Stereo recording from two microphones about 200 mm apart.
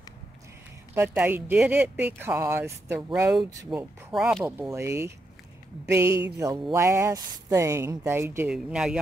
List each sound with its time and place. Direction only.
0.9 s speech: 10° right (ahead or behind)